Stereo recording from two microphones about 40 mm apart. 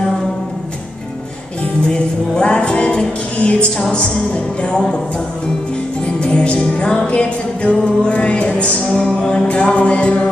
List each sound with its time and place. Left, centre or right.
1.8 s music: left
6.0 s music: left